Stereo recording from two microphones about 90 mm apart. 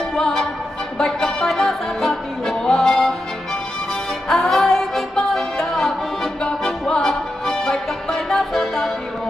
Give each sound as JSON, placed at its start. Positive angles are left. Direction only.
{"t": 0.1, "sound": "music", "side_deg": 5}
{"t": 4.3, "sound": "music", "side_deg": 0}